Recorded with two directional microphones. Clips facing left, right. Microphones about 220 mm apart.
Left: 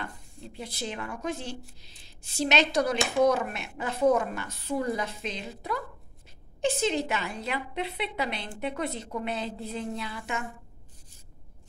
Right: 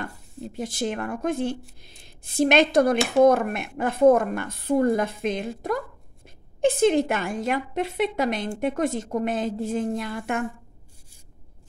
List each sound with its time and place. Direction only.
0.0 s a woman's voice: 50° right (ahead or behind)